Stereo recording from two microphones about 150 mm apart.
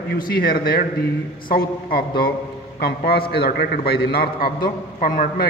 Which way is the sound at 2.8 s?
90° left.